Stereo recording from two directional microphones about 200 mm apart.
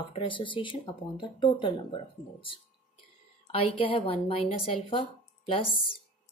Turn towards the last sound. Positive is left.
turn(degrees=25)  # may be behind; listen again after turning